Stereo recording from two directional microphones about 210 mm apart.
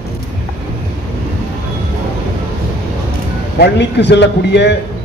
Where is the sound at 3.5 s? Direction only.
55° left (ahead or behind).